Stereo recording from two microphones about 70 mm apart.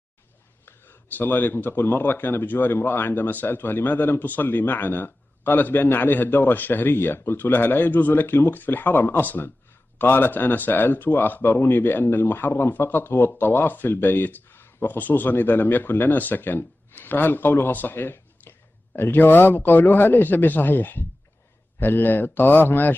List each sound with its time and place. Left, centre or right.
0.7 s speech: left